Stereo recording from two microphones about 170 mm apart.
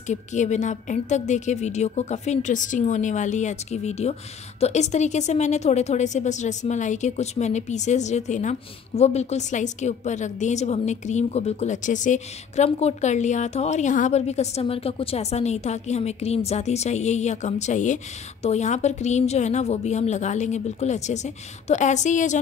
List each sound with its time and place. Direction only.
0.1 s a woman's voice: 45° left (ahead or behind)